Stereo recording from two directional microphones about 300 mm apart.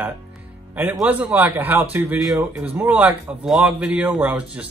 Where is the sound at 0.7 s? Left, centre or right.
Centre.